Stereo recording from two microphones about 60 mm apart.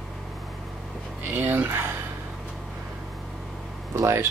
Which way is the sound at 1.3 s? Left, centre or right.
Right.